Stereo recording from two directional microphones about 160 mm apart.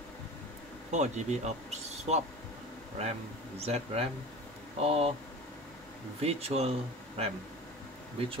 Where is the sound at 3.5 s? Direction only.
40° right (ahead or behind).